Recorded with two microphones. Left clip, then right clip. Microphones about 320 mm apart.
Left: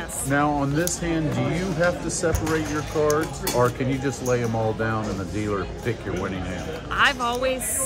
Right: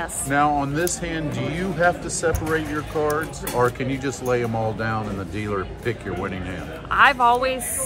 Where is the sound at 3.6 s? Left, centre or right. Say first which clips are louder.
Right 1 dB; right.